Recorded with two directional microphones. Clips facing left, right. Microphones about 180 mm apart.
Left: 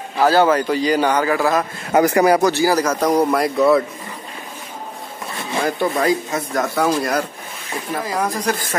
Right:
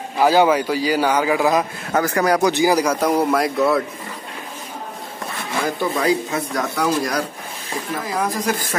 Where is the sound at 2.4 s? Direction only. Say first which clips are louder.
Even; 15° right (ahead or behind).